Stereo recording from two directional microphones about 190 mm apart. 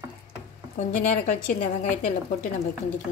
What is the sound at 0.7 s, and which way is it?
A woman's voice, 45° left (ahead or behind).